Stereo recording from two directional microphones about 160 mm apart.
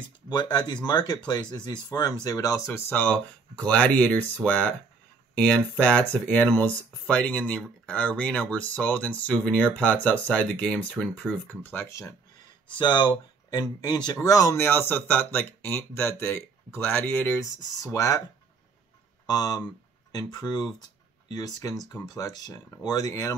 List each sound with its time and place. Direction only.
0.3 s speech: 25° left (ahead or behind)
12.7 s speech: 30° left (ahead or behind)
19.2 s speech: 25° left (ahead or behind)